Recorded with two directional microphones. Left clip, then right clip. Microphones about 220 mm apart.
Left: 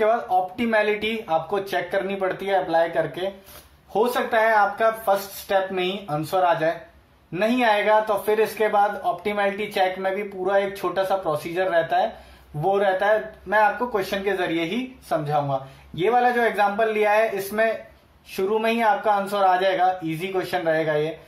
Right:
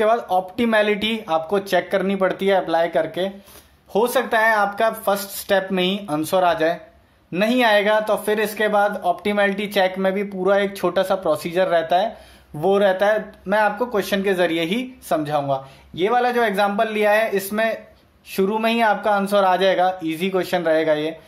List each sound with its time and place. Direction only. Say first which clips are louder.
0.0 s speech: right 2 dB; 45° right (ahead or behind)